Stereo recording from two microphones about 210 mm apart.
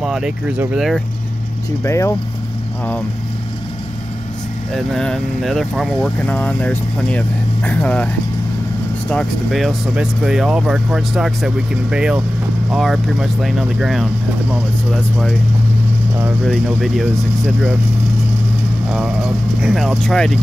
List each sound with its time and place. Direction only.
0.0 s speech: 5° right (ahead or behind)
1.9 s speech: 15° left (ahead or behind)
4.7 s speech: 5° left (ahead or behind)
9.1 s speech: centre (ahead or behind)
18.9 s speech: 5° right (ahead or behind)